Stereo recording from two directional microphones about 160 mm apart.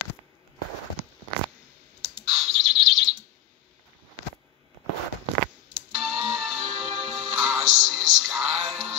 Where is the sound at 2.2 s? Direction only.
Centre (ahead or behind).